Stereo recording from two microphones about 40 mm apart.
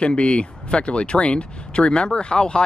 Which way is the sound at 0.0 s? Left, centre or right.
Left.